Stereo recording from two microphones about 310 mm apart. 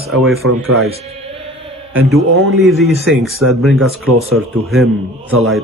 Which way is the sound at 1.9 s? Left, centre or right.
Centre.